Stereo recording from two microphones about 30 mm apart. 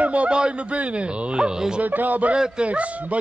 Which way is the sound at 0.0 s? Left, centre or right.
Right.